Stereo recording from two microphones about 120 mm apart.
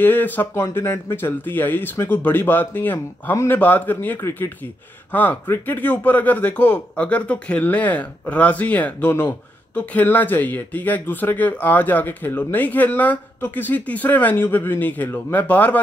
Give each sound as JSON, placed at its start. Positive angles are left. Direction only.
{"t": 0.0, "sound": "speech", "side_deg": 15}